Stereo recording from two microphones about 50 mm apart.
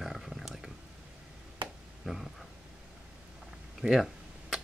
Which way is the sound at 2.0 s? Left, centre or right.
Centre.